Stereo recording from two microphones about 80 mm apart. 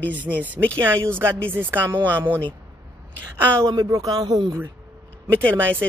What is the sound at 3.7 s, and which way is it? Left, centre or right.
Speech, right.